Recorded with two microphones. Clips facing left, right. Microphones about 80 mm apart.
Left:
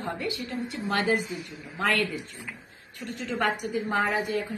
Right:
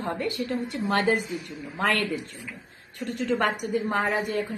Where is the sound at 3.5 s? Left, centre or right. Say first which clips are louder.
Right 2 dB; right.